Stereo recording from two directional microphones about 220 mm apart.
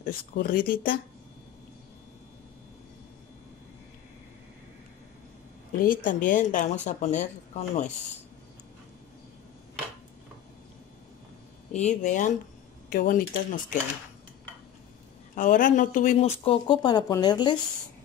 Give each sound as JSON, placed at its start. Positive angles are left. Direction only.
{"t": 0.0, "sound": "speech", "side_deg": 40}
{"t": 5.8, "sound": "speech", "side_deg": 40}
{"t": 11.7, "sound": "speech", "side_deg": 35}
{"t": 15.3, "sound": "speech", "side_deg": 35}